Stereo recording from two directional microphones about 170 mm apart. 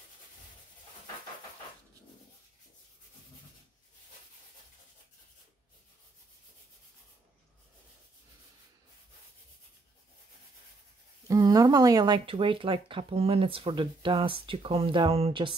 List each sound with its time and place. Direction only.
11.2 s speech: 20° right (ahead or behind)